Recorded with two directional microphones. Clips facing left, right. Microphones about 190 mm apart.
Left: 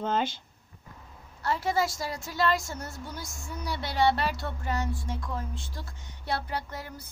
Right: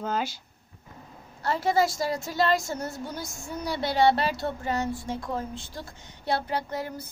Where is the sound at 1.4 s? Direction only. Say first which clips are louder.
Right 4 dB; 30° right (ahead or behind).